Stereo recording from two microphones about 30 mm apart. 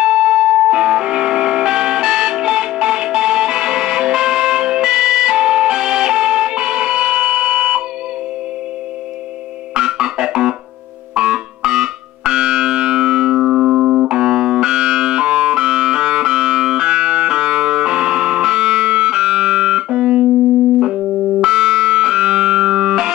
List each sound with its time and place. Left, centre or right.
0.0 s music: right
9.8 s music: right
13.4 s music: centre